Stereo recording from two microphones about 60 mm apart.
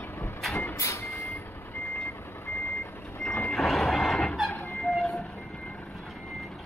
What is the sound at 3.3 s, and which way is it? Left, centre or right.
Reversing beeps, left.